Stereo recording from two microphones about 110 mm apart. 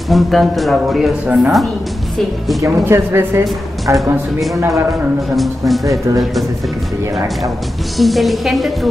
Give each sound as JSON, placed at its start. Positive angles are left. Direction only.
{"t": 0.1, "sound": "speech", "side_deg": 0}
{"t": 2.6, "sound": "a woman's voice", "side_deg": -25}
{"t": 5.3, "sound": "speech", "side_deg": 0}
{"t": 8.0, "sound": "speech", "side_deg": 0}